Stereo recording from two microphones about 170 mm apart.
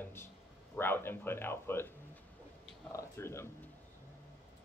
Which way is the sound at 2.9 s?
15° left (ahead or behind).